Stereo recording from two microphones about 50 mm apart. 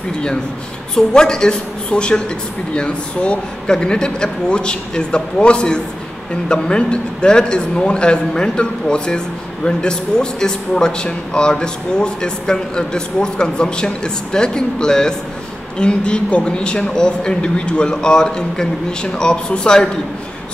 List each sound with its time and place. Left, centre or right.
0.9 s a man's voice: centre